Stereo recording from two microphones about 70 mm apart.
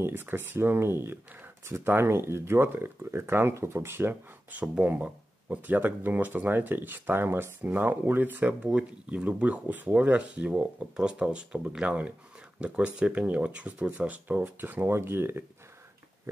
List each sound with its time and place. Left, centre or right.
0.0 s speech: right